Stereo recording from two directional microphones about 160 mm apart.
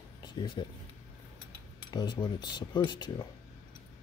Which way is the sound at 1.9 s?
25° left (ahead or behind).